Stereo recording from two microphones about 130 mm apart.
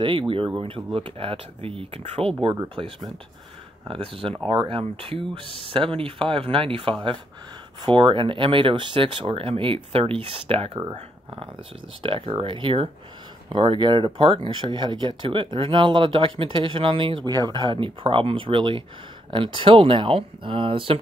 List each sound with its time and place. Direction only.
0.0 s speech: 40° right (ahead or behind)
12.0 s speech: 40° right (ahead or behind)